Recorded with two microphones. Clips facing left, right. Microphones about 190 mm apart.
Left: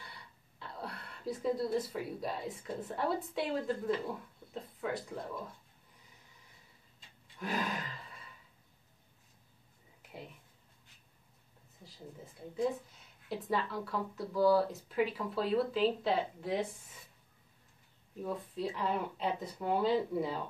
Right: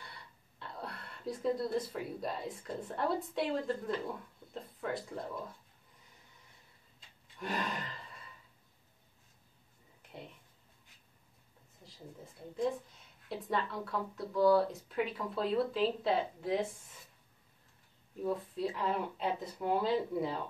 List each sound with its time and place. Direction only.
0.0 s speech: centre (ahead or behind)
7.3 s a sound: centre (ahead or behind)
13.3 s speech: centre (ahead or behind)
18.2 s speech: centre (ahead or behind)